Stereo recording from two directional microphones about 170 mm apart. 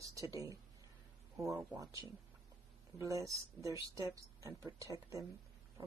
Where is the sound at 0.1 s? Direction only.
20° right (ahead or behind).